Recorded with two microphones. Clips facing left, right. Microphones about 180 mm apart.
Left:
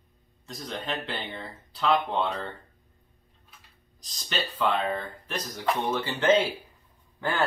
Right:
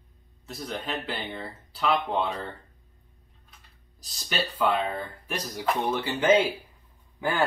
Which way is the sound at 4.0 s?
10° right (ahead or behind).